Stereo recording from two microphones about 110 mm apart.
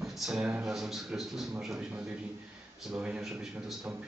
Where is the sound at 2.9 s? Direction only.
10° right (ahead or behind).